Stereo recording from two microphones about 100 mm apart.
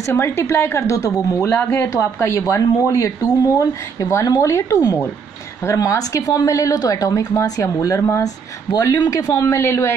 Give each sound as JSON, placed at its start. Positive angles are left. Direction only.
{"t": 0.0, "sound": "a woman's voice", "side_deg": 25}